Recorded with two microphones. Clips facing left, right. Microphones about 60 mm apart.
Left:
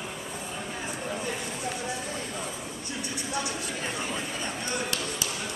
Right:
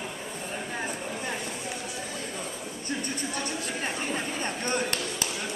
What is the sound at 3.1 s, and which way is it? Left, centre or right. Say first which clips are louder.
Music: even; right.